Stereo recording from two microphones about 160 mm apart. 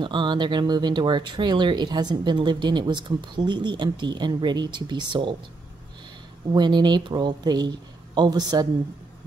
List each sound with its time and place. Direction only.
0.0 s speech: 30° right (ahead or behind)
6.5 s speech: 30° right (ahead or behind)